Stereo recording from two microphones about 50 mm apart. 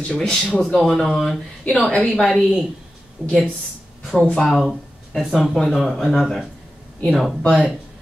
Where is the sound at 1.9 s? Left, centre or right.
Centre.